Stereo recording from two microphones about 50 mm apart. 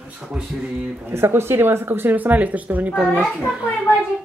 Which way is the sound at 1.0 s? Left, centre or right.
Right.